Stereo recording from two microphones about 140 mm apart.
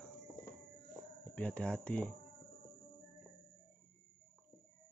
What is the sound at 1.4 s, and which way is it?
Speech, 10° left (ahead or behind).